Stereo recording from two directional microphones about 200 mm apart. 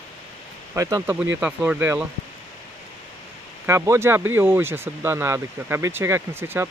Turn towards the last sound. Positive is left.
turn(degrees=-10)  # may be behind; listen again after turning